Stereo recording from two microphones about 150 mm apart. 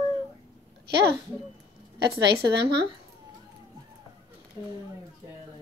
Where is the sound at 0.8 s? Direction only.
90° right.